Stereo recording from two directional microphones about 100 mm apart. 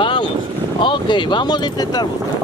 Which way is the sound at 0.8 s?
55° left (ahead or behind).